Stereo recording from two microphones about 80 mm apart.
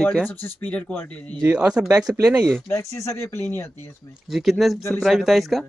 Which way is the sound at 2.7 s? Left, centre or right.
Left.